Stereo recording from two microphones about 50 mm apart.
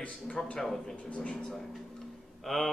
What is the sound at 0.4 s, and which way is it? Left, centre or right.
Speech, centre.